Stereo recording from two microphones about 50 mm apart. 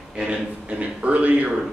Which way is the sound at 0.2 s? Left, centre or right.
Right.